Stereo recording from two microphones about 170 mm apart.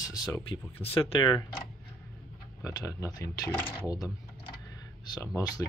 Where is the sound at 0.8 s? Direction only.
35° left (ahead or behind).